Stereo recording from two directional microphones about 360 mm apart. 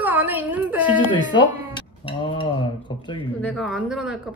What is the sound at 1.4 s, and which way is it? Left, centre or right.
Speech, centre.